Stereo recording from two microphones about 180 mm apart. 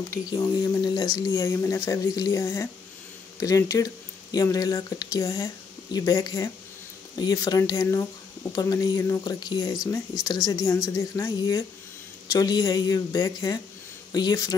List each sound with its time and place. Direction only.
0.1 s a woman's voice: 20° left (ahead or behind)